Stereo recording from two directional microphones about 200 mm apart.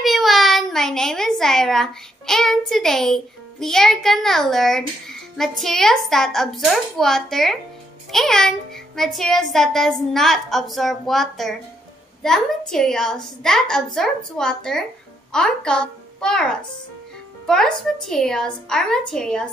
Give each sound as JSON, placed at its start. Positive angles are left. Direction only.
{"t": 0.0, "sound": "a child's voice", "side_deg": 0}
{"t": 17.5, "sound": "a child's voice", "side_deg": 5}